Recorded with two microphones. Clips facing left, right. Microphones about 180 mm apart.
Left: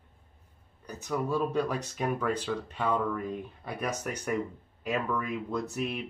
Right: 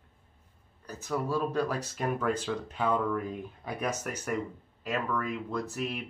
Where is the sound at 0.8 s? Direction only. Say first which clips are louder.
Even; 5° right (ahead or behind).